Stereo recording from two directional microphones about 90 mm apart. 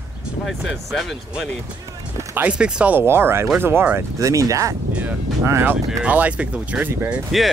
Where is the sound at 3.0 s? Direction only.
25° right (ahead or behind).